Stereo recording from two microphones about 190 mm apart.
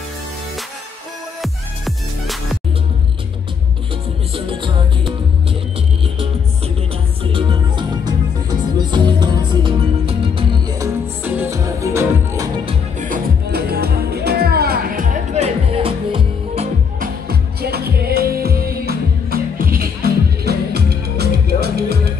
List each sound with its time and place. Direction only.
1.4 s music: centre (ahead or behind)
4.5 s music: 25° right (ahead or behind)
7.3 s music: 20° right (ahead or behind)
13.1 s music: 55° right (ahead or behind); by 16.6 s 30° right (ahead or behind)
17.0 s music: 55° right (ahead or behind)